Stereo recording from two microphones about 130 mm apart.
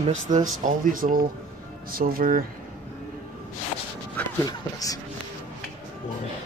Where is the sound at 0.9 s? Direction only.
90° right.